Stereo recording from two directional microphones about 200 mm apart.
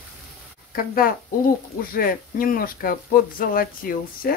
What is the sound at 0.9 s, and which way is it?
Speech, 45° left (ahead or behind).